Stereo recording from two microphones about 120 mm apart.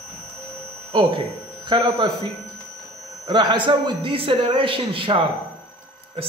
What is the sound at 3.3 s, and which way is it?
A man's voice, 40° right (ahead or behind).